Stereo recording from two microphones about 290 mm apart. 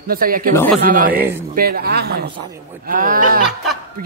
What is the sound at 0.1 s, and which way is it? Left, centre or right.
A man's voice, right.